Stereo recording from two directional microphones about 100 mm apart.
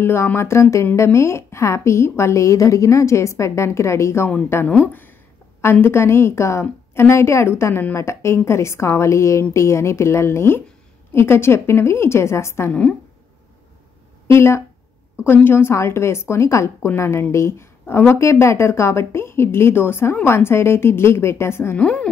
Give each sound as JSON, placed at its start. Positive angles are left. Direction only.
{"t": 0.0, "sound": "speech", "side_deg": 25}
{"t": 14.2, "sound": "speech", "side_deg": 25}
{"t": 21.7, "sound": "a woman's voice", "side_deg": 10}